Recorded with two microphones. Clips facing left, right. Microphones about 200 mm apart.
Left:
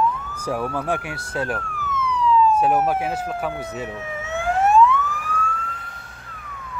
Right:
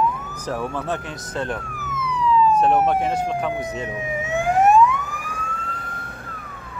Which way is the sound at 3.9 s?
15° right (ahead or behind).